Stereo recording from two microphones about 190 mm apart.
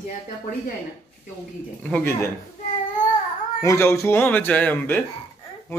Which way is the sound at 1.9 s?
15° left (ahead or behind).